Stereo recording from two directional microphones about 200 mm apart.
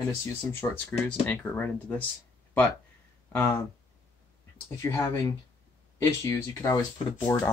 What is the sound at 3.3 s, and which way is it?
Speech, 10° left (ahead or behind).